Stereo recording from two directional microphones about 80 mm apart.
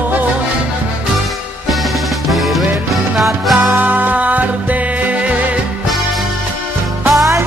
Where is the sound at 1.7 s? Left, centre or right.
Centre.